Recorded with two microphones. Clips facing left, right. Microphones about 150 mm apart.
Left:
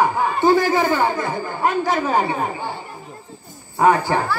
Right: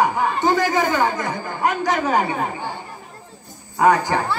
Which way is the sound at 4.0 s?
15° right (ahead or behind).